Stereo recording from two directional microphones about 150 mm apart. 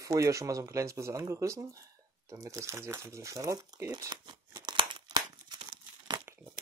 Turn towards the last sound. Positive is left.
turn(degrees=-30)  # may be behind; listen again after turning